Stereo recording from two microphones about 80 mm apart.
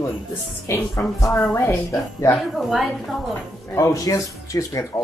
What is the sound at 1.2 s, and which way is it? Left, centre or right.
A woman's voice, left.